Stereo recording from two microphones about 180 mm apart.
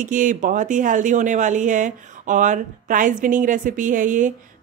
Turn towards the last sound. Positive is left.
turn(degrees=-45)  # may be behind; listen again after turning